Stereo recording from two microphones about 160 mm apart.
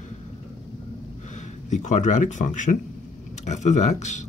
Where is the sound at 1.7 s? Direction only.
45° left (ahead or behind).